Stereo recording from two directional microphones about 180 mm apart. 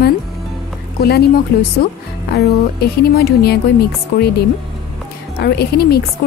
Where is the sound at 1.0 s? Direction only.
60° left (ahead or behind).